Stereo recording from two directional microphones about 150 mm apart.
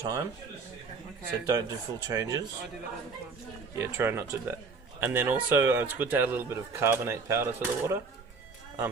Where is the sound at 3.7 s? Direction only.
15° right (ahead or behind).